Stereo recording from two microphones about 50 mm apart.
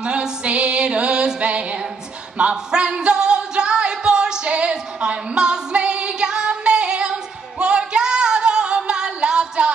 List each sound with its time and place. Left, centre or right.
0.0 s music: centre